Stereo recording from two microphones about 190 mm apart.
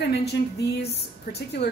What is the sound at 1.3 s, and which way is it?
Speech, 60° left (ahead or behind).